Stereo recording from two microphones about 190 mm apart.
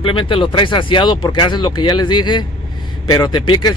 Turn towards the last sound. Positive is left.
turn(degrees=25)  # may be behind; listen again after turning